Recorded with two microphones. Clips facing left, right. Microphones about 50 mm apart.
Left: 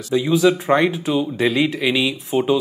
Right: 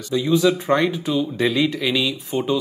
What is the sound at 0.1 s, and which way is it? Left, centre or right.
Speech, centre.